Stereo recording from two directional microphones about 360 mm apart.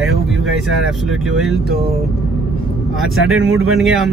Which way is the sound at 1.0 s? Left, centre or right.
Centre.